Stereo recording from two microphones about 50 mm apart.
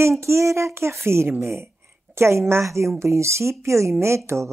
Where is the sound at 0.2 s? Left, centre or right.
Right.